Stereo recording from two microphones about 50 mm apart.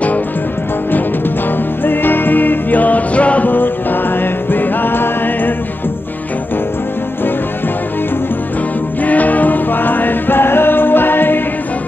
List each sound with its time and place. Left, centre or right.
1.9 s music: left
3.4 s music: left
9.0 s music: left